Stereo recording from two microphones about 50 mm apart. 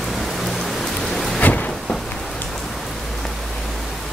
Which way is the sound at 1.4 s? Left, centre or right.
Left.